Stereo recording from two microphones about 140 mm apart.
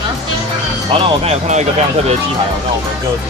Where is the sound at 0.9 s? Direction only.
50° right (ahead or behind).